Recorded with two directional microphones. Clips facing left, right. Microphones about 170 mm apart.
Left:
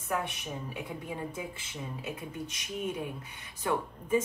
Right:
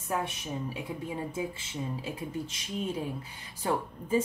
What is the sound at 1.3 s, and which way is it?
A woman's voice, 30° right (ahead or behind).